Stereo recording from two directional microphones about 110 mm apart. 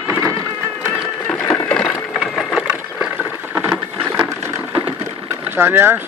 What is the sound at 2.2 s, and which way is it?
Sewing machine, 5° right (ahead or behind).